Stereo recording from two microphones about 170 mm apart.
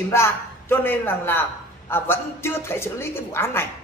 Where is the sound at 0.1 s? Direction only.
15° left (ahead or behind).